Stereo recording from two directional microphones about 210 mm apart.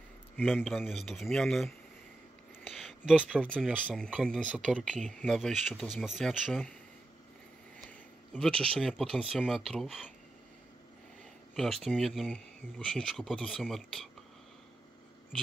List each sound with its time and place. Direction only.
0.7 s speech: centre (ahead or behind)
2.6 s a sound: centre (ahead or behind)
3.4 s speech: 5° left (ahead or behind)
7.8 s speech: 5° left (ahead or behind)
11.5 s speech: centre (ahead or behind)